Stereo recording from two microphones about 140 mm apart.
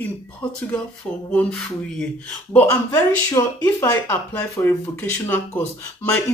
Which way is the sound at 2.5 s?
15° left (ahead or behind).